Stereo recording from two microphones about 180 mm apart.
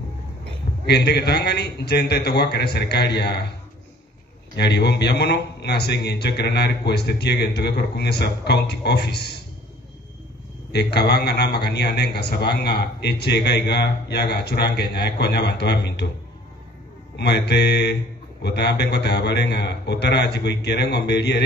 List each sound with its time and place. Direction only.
0.8 s a man's voice: 65° left (ahead or behind)
4.6 s a man's voice: 65° left (ahead or behind)
10.7 s a man's voice: 65° left (ahead or behind)
17.2 s a man's voice: 65° left (ahead or behind)